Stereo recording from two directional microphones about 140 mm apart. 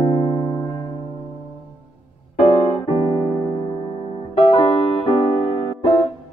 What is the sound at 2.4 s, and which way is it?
Piano, 40° left (ahead or behind).